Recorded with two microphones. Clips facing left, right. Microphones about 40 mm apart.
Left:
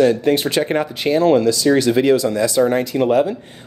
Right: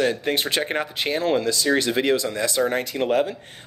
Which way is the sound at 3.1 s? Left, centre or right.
Left.